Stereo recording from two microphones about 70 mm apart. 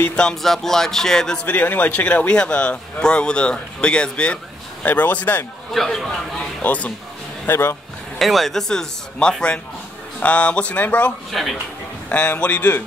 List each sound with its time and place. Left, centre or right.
0.1 s speech: centre
5.7 s speech: centre
6.6 s speech: centre
7.4 s speech: left
8.2 s speech: centre; by 12.8 s left